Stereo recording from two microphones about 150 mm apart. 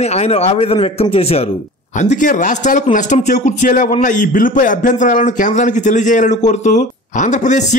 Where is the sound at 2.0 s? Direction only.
55° left (ahead or behind).